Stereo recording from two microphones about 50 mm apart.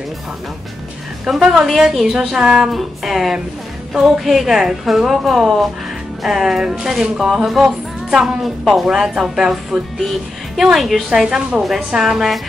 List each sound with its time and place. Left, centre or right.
1.3 s a woman's voice: centre
3.9 s speech: centre
4.2 s a woman's voice: centre